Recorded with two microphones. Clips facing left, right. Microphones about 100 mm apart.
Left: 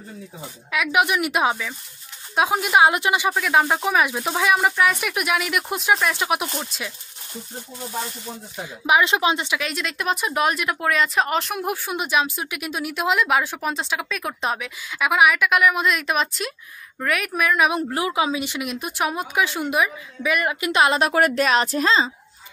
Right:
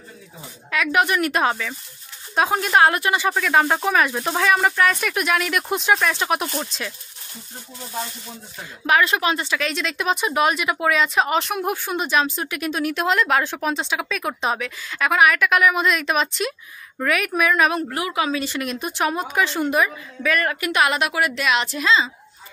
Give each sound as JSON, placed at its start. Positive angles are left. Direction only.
{"t": 0.7, "sound": "a woman's voice", "side_deg": 10}
{"t": 8.8, "sound": "speech", "side_deg": 20}
{"t": 9.6, "sound": "speech", "side_deg": 5}
{"t": 17.6, "sound": "a woman's voice", "side_deg": 20}
{"t": 20.7, "sound": "speech", "side_deg": 30}
{"t": 21.1, "sound": "a woman's voice", "side_deg": 45}